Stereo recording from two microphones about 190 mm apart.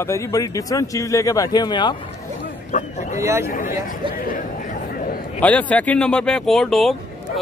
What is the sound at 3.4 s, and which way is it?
A man's voice, 50° left (ahead or behind).